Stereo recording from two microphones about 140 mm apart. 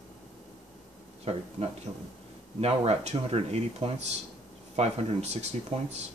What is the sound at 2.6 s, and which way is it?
Speech, 45° right (ahead or behind).